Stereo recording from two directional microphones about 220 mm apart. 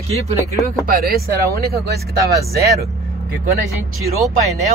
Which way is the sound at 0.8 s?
45° right (ahead or behind).